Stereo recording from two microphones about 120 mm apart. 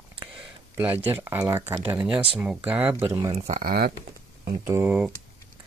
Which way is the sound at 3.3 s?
55° right (ahead or behind).